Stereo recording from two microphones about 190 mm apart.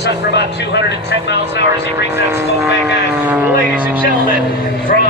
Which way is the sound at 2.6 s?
10° right (ahead or behind).